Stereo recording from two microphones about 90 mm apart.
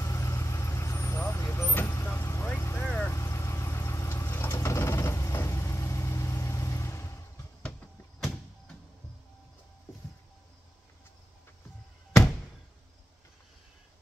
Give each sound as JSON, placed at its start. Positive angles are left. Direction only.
{"t": 0.0, "sound": "vehicle", "side_deg": 35}
{"t": 3.1, "sound": "vehicle", "side_deg": 30}